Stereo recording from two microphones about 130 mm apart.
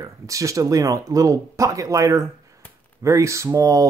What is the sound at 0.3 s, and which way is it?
Speech, 25° right (ahead or behind).